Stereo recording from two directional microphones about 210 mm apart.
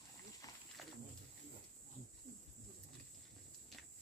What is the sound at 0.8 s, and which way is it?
Wild animals, centre (ahead or behind).